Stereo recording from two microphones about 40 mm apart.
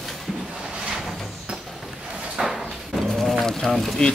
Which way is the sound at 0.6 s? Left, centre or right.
Centre.